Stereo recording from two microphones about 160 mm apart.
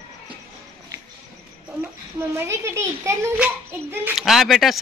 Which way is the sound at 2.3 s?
15° right (ahead or behind).